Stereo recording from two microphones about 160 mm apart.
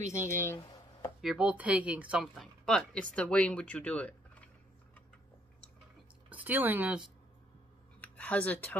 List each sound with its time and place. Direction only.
0.1 s speech: 15° left (ahead or behind)
1.2 s speech: 5° right (ahead or behind)
6.3 s speech: 10° right (ahead or behind)
8.0 s a sound: 10° left (ahead or behind)